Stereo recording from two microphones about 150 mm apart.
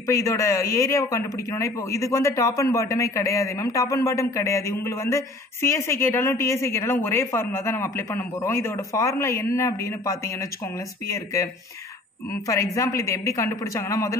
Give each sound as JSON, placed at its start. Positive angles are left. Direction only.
{"t": 0.0, "sound": "a man's voice", "side_deg": 20}
{"t": 12.4, "sound": "a man's voice", "side_deg": 20}